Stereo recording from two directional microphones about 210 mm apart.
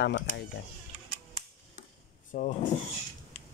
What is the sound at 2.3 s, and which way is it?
Speech, 35° left (ahead or behind).